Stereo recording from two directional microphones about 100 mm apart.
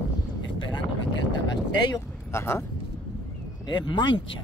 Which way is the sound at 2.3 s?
25° left (ahead or behind).